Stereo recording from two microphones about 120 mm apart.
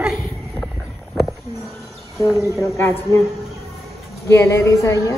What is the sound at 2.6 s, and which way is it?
Speech, 20° left (ahead or behind).